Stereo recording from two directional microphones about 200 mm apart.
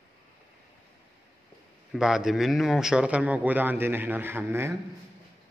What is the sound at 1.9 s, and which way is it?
A man's voice, 5° right (ahead or behind).